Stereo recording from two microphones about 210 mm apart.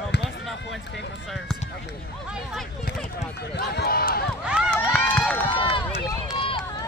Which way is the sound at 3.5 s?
50° left (ahead or behind).